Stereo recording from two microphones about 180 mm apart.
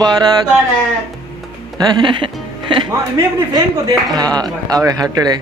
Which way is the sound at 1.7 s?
25° right (ahead or behind).